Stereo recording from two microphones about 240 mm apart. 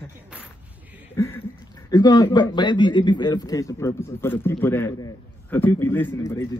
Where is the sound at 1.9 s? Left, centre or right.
Centre.